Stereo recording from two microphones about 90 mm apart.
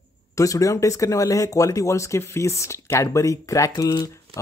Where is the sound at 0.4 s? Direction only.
40° left (ahead or behind).